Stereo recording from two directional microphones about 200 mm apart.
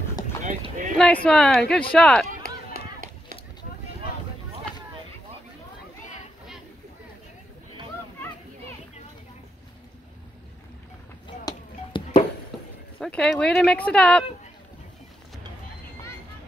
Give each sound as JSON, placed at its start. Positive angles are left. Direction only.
{"t": 0.9, "sound": "speech", "side_deg": 5}
{"t": 11.4, "sound": "a sound", "side_deg": 20}
{"t": 13.0, "sound": "speech", "side_deg": 5}